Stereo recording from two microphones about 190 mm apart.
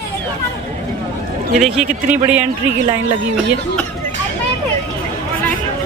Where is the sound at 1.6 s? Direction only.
5° right (ahead or behind).